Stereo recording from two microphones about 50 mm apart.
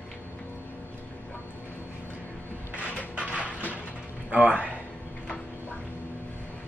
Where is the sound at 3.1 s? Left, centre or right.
Right.